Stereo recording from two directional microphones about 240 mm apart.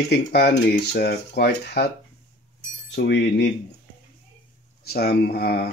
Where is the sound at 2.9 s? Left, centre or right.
Left.